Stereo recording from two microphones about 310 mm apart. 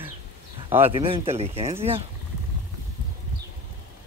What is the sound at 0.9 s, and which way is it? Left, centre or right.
Speech, centre.